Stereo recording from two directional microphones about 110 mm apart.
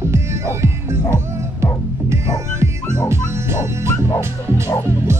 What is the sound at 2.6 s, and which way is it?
Music, 25° right (ahead or behind).